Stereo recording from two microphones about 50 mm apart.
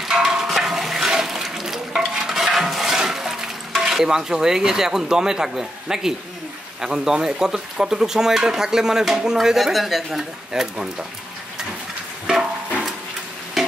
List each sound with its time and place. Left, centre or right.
0.0 s toilet flush: centre
6.8 s speech: centre
10.5 s speech: centre
12.3 s a sound: centre
13.6 s music: centre